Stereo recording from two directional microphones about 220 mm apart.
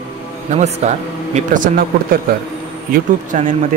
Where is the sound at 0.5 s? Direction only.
30° right (ahead or behind).